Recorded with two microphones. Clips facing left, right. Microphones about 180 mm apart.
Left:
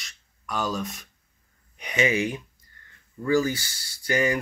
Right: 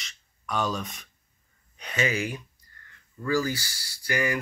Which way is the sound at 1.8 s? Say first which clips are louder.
Left 4 dB; 15° left (ahead or behind).